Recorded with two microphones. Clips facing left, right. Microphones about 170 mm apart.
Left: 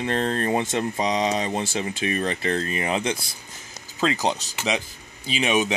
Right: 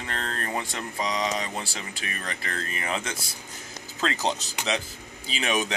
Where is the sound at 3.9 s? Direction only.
10° left (ahead or behind).